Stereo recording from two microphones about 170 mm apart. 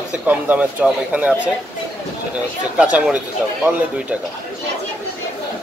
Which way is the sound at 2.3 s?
5° right (ahead or behind).